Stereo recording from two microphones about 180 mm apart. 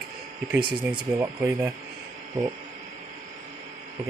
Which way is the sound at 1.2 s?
15° right (ahead or behind).